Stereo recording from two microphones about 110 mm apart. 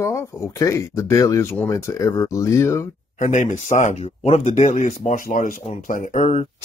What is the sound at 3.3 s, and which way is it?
Speech, 90° left.